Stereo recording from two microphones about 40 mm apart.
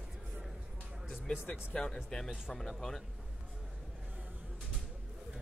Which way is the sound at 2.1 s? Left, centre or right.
Centre.